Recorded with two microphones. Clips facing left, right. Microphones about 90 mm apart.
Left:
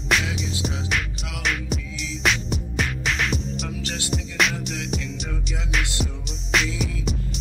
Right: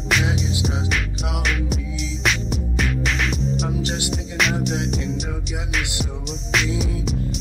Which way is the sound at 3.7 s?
25° right (ahead or behind).